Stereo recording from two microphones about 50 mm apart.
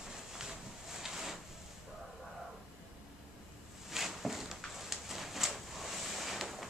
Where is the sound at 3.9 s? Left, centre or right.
Centre.